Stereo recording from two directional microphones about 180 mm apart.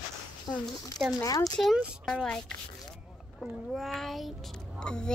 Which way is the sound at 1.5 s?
Centre (ahead or behind).